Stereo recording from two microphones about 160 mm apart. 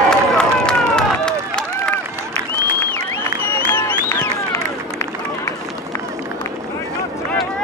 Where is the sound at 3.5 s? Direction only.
15° left (ahead or behind).